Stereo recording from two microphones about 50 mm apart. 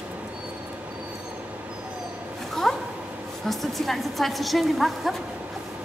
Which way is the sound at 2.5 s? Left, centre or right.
Centre.